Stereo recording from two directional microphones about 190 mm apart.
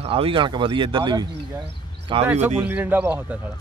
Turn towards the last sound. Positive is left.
turn(degrees=-10)  # may be behind; listen again after turning